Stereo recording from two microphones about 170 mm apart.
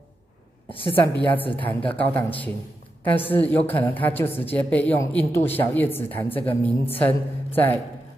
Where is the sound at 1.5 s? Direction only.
10° left (ahead or behind).